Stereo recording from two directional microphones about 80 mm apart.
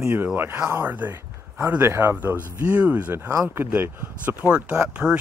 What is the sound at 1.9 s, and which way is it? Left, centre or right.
Speech, right.